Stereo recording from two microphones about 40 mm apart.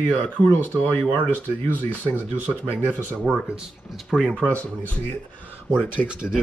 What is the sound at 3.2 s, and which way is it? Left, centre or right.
Speech, right.